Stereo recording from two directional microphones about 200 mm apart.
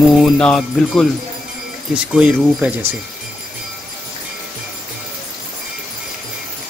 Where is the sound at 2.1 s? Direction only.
5° right (ahead or behind).